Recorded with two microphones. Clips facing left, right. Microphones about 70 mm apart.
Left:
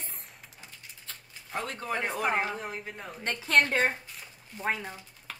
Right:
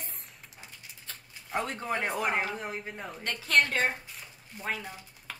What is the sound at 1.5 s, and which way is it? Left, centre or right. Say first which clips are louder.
Speech: right 2 dB; centre.